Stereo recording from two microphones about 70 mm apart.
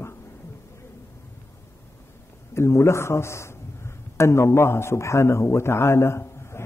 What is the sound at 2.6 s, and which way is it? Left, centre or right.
A man's voice, left.